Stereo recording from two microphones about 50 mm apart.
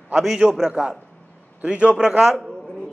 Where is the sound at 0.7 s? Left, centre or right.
Centre.